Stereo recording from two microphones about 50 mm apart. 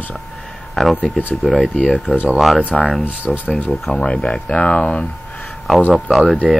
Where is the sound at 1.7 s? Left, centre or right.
Left.